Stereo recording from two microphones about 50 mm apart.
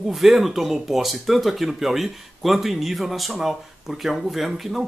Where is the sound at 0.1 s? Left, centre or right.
Centre.